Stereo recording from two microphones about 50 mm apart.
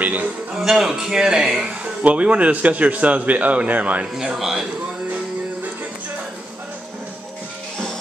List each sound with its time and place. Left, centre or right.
0.0 s a man's voice: right
0.6 s a man's voice: centre
2.0 s speech: right
4.0 s a man's voice: centre
4.4 s a man's voice: centre